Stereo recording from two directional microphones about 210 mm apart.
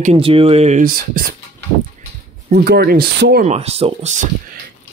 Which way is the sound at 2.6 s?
45° right (ahead or behind).